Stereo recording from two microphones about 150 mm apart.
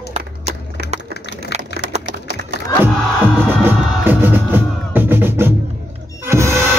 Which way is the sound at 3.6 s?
15° right (ahead or behind).